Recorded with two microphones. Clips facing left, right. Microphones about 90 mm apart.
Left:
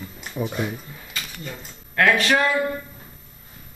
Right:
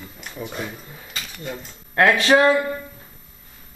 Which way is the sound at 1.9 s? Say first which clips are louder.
Right 3 dB; 25° right (ahead or behind).